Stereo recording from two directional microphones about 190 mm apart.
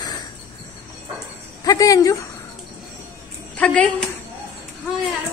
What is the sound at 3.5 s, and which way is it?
Speech, 5° left (ahead or behind).